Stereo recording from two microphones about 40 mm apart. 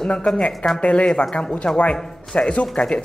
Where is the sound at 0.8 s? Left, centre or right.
Left.